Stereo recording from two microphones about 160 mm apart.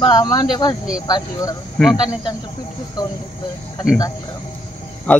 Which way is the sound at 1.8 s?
5° left (ahead or behind).